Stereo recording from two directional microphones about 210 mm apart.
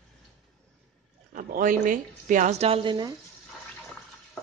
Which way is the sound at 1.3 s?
40° right (ahead or behind).